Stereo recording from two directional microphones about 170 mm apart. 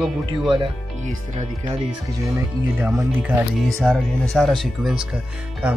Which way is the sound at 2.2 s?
15° right (ahead or behind).